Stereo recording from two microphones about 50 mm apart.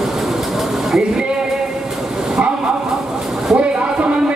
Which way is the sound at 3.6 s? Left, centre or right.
Right.